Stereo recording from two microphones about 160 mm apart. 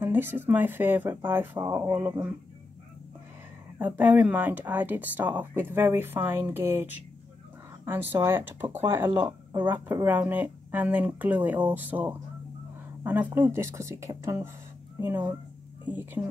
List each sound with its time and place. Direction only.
0.0 s speech: 10° right (ahead or behind)
3.7 s speech: 10° right (ahead or behind)